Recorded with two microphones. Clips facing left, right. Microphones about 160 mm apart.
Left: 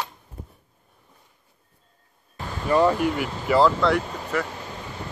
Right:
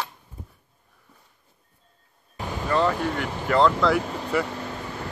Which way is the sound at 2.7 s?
15° left (ahead or behind).